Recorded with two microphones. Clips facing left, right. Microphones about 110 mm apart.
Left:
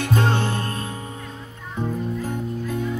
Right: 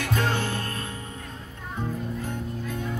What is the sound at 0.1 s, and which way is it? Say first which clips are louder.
Music: left 5 dB; 30° left (ahead or behind).